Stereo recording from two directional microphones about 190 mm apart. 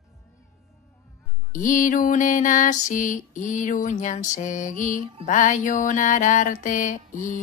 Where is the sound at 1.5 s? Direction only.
45° left (ahead or behind).